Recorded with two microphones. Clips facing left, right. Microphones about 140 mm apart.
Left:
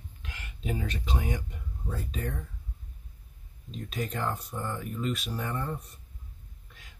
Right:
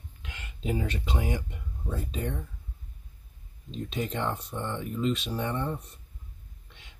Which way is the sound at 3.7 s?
30° right (ahead or behind).